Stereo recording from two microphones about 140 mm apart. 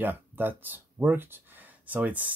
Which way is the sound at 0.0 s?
15° right (ahead or behind).